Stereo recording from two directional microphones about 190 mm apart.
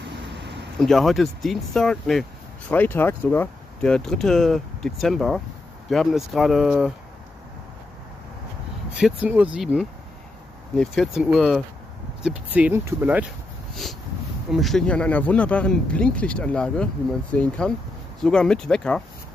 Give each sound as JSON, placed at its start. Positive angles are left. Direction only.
{"t": 0.0, "sound": "a sound", "side_deg": -65}
{"t": 0.7, "sound": "speech", "side_deg": 0}
{"t": 8.9, "sound": "speech", "side_deg": -5}
{"t": 14.5, "sound": "speech", "side_deg": 0}